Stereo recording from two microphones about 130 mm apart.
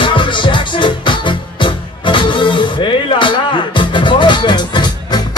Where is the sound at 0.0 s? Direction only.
40° left (ahead or behind).